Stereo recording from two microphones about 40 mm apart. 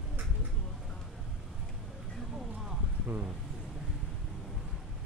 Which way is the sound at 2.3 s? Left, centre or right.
Centre.